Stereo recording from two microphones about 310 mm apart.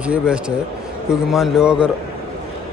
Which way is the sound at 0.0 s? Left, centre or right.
Centre.